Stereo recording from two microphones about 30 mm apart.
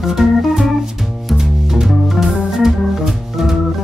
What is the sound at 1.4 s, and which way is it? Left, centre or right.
Organ, centre.